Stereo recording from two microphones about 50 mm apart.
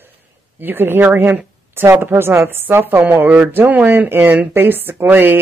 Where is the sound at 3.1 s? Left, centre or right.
Right.